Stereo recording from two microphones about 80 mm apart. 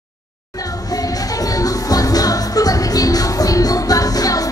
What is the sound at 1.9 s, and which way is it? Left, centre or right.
Music, left.